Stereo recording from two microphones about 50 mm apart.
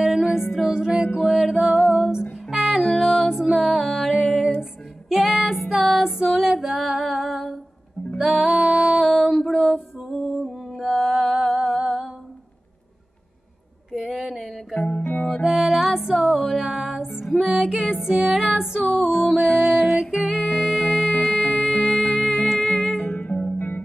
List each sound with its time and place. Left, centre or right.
0.0 s music: centre
1.1 s music: centre
6.8 s female singing: centre
8.2 s music: centre
8.5 s music: centre
9.0 s a sound: centre
10.1 s music: centre
13.9 s a sound: centre
14.7 s music: centre
15.2 s music: centre
19.0 s music: centre
22.9 s music: left